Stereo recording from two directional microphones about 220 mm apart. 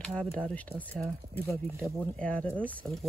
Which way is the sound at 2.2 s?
5° left (ahead or behind).